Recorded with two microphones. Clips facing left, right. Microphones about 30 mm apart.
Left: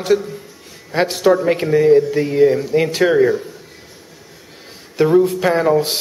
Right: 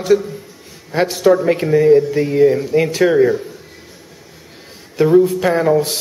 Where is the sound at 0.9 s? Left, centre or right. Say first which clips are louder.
Right 1 dB; centre.